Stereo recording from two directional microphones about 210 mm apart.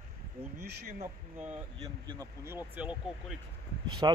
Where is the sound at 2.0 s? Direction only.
15° right (ahead or behind).